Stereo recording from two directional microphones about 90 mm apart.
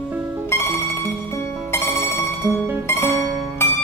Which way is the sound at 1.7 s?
30° left (ahead or behind).